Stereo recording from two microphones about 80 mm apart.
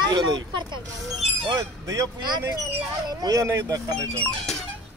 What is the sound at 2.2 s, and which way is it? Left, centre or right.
Speech, right.